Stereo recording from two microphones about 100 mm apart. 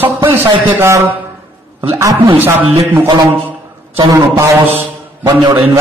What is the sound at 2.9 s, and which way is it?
Speech, 30° right (ahead or behind).